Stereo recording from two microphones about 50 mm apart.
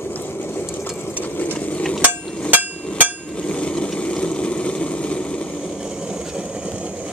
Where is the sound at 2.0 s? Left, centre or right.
Right.